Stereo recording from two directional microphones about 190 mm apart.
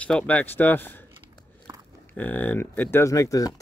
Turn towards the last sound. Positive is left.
turn(degrees=15)  # may be behind; listen again after turning